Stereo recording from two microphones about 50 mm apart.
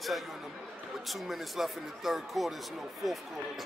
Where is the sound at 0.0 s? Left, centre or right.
Centre.